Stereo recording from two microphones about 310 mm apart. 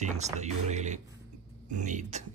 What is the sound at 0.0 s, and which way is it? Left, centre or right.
Speech, right.